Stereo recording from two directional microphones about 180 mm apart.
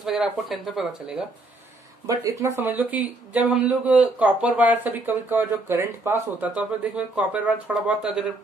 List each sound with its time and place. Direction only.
0.0 s speech: centre (ahead or behind)
2.0 s speech: 15° right (ahead or behind)